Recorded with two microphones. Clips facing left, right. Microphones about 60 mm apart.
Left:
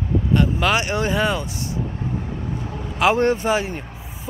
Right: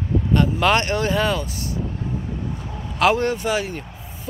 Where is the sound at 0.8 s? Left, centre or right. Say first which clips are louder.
Even; centre.